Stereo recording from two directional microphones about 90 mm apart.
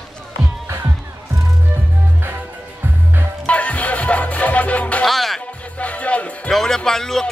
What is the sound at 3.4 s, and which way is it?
Music, 15° left (ahead or behind).